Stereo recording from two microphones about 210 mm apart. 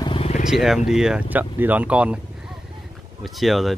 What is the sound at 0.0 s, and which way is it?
Wild animals, 25° left (ahead or behind).